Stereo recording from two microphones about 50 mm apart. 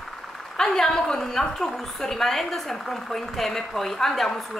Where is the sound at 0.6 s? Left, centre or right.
Centre.